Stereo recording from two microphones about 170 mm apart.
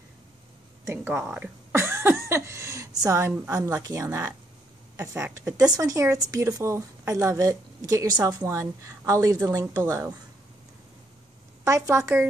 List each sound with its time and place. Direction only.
0.8 s a sound: 10° right (ahead or behind)
3.1 s a woman's voice: 15° right (ahead or behind)
11.6 s a woman's voice: 15° right (ahead or behind)